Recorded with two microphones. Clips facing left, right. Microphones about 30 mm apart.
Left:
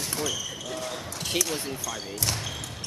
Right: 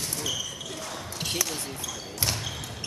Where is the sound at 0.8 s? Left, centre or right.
Centre.